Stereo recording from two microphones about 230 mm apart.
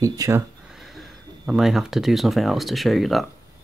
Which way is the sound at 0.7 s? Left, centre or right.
Centre.